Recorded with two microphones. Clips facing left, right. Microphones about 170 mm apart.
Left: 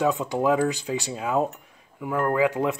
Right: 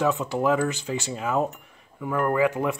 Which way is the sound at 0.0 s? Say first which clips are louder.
Left 1 dB; 20° left (ahead or behind).